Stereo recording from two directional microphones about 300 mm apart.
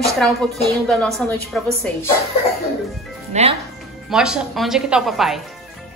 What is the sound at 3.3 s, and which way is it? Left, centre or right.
Speech, right.